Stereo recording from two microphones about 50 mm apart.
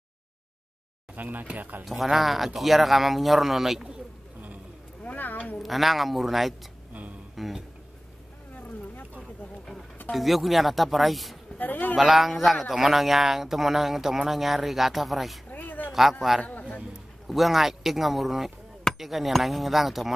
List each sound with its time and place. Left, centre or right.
1.1 s speech: right
1.9 s speech: centre
5.0 s a sound: left
5.6 s speech: centre
10.1 s speech: centre
11.5 s a man's voice: left
12.0 s speech: centre
15.5 s a sound: left
15.9 s speech: centre
16.4 s a man's voice: left
17.3 s speech: centre